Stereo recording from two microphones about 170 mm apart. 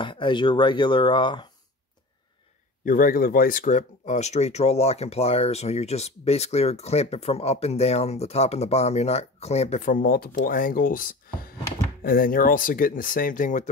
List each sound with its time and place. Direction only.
0.0 s speech: 30° left (ahead or behind)
2.8 s speech: 55° left (ahead or behind)